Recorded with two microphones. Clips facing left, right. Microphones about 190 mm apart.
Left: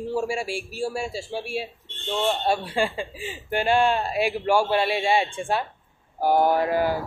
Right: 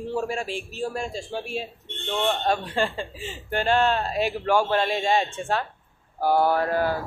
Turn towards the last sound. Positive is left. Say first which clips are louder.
# left 1 dB
turn(degrees=10)  # may be behind; listen again after turning